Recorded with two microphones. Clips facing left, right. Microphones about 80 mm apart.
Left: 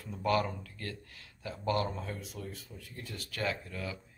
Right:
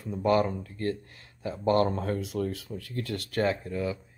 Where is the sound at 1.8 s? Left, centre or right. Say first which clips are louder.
Right 9 dB; right.